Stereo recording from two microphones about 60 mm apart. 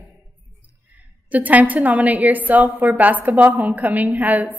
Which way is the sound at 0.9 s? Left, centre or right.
Right.